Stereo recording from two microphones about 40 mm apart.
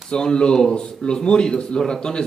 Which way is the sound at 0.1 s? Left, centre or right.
Left.